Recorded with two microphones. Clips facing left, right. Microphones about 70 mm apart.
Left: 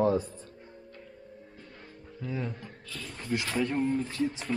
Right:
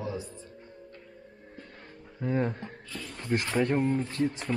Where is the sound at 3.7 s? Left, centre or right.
Centre.